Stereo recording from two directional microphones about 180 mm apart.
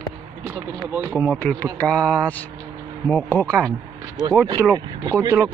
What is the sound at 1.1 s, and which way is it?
Speech, 10° left (ahead or behind).